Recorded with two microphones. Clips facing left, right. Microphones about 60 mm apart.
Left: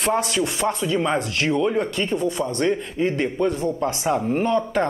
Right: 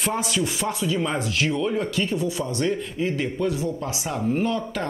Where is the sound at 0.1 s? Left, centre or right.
Left.